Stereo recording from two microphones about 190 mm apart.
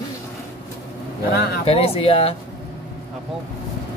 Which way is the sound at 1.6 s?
30° left (ahead or behind).